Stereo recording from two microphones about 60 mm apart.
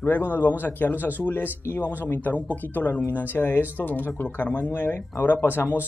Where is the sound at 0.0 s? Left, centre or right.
Left.